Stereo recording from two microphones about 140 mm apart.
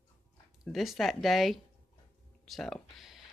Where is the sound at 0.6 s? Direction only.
Centre (ahead or behind).